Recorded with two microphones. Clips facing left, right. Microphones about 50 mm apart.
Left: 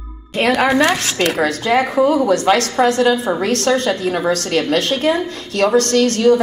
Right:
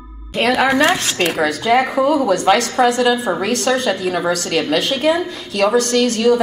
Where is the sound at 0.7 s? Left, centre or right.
Right.